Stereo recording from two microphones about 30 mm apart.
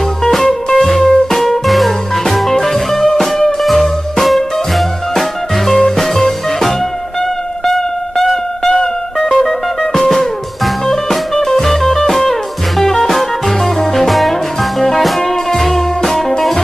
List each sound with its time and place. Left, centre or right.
0.2 s music: centre
5.8 s music: centre
8.6 s music: centre
9.4 s music: centre